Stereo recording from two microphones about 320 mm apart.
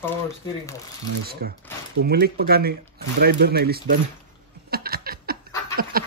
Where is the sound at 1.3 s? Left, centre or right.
Right.